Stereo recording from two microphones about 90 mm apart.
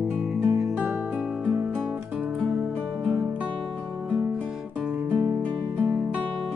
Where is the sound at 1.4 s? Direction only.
20° right (ahead or behind).